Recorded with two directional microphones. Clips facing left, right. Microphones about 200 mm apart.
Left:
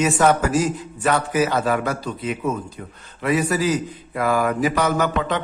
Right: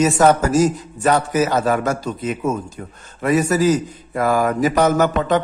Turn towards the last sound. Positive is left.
turn(degrees=-45)  # may be behind; listen again after turning